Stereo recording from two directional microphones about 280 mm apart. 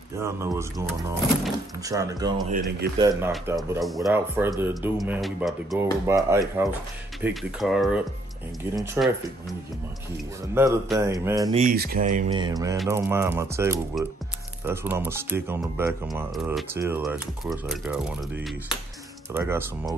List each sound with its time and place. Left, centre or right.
0.2 s speech: centre
10.5 s speech: centre
11.6 s speech: right
12.4 s speech: centre